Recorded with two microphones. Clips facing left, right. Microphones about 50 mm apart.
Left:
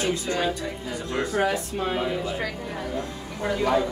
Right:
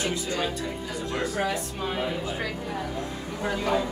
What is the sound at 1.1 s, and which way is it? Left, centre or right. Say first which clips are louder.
Speech: left 4 dB; left.